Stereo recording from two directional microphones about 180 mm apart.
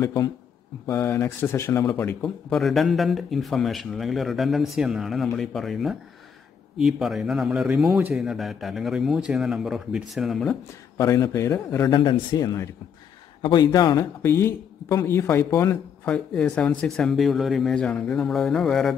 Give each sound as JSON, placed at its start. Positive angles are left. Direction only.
{"t": 0.0, "sound": "a man's voice", "side_deg": 15}
{"t": 11.0, "sound": "a man's voice", "side_deg": 20}